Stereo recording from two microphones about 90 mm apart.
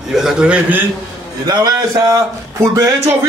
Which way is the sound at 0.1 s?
5° right (ahead or behind).